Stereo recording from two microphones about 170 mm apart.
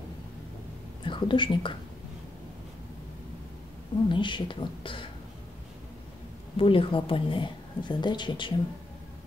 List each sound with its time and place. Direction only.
1.0 s a woman's voice: 30° left (ahead or behind)
4.1 s a woman's voice: 30° left (ahead or behind)
6.5 s a woman's voice: 30° left (ahead or behind)